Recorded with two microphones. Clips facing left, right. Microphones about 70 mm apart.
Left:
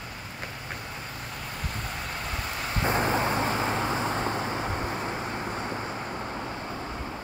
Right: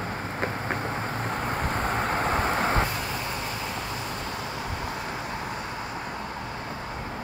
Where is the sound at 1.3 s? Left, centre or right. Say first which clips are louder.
Right 9 dB; right.